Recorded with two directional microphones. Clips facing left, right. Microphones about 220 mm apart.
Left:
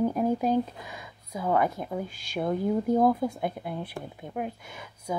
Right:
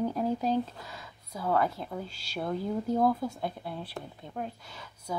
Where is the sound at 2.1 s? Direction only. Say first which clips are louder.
Left 5 dB; 50° left (ahead or behind).